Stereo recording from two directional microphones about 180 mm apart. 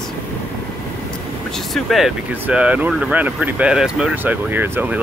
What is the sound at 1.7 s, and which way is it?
Speech, centre (ahead or behind).